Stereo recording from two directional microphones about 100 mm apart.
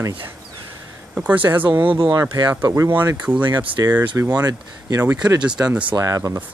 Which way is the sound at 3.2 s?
10° right (ahead or behind).